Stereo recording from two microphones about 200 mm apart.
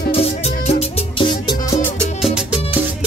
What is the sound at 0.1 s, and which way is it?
Music, 30° left (ahead or behind).